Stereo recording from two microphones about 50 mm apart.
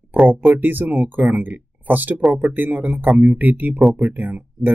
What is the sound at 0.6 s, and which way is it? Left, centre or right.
Speech, right.